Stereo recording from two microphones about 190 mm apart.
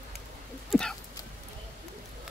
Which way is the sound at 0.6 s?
5° left (ahead or behind).